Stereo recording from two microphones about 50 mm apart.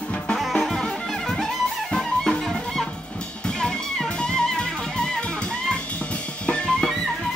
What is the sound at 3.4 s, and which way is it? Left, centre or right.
Music, centre.